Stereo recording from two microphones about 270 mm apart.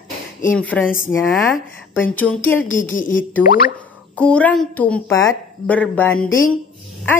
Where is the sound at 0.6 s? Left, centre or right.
Centre.